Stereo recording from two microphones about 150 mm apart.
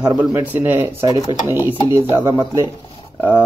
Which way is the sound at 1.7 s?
35° left (ahead or behind).